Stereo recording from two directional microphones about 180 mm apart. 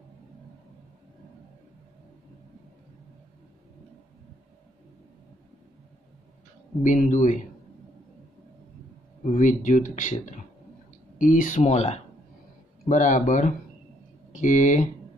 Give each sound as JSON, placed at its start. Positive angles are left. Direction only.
{"t": 6.8, "sound": "speech", "side_deg": 45}
{"t": 9.3, "sound": "speech", "side_deg": 45}